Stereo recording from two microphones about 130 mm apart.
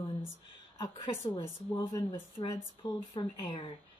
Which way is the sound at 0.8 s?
30° left (ahead or behind).